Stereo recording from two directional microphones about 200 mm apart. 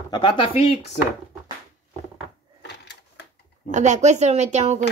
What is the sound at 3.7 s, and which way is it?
Speech, 35° right (ahead or behind).